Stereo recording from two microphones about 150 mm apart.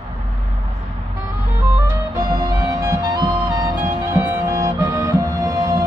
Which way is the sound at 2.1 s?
20° right (ahead or behind).